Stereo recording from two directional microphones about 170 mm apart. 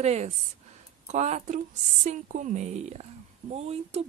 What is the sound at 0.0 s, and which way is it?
A woman's voice, 40° right (ahead or behind).